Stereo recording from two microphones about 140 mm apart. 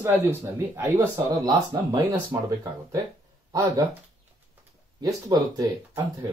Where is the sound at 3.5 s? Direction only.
25° right (ahead or behind).